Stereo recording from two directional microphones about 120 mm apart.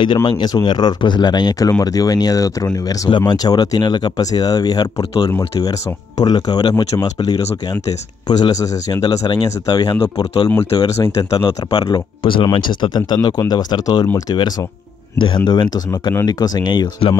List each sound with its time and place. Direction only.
0.0 s speech: 40° left (ahead or behind)
11.0 s speech: 30° left (ahead or behind)